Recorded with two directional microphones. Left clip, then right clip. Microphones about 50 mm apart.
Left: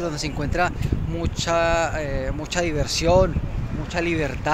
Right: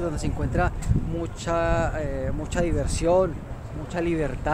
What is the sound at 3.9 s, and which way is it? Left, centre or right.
Speech, centre.